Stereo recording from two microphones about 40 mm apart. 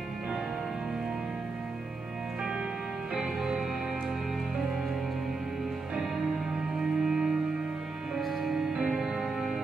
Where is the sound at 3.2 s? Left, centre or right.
Centre.